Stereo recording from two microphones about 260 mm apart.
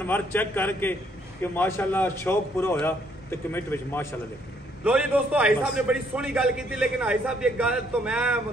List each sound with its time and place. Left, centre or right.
0.0 s a man's voice: centre
4.8 s a man's voice: centre